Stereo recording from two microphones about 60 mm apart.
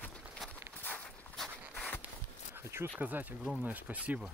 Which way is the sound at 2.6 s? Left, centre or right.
Right.